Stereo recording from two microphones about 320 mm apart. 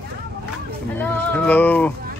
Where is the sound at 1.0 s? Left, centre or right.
Centre.